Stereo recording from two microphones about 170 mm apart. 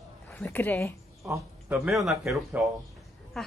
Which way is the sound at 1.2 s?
20° right (ahead or behind).